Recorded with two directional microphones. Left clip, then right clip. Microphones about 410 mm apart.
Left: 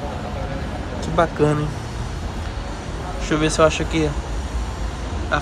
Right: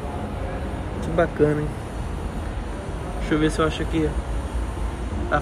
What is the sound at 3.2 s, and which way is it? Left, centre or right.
Speech, centre.